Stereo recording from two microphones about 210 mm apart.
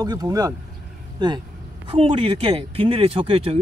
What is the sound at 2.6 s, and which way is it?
Speech, 25° right (ahead or behind).